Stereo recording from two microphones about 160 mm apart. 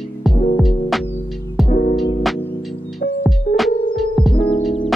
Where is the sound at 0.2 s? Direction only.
Centre (ahead or behind).